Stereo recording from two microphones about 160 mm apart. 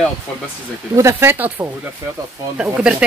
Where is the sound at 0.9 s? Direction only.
15° right (ahead or behind).